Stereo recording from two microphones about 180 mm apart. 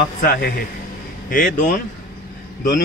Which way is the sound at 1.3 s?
45° left (ahead or behind).